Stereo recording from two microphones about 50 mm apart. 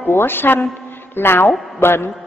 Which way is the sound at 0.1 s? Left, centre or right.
Left.